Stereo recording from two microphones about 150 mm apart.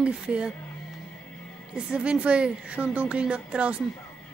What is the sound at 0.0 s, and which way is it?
Speech, 5° right (ahead or behind).